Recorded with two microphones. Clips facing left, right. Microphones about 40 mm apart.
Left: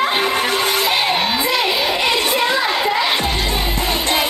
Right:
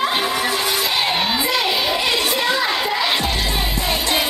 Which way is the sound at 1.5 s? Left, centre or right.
Centre.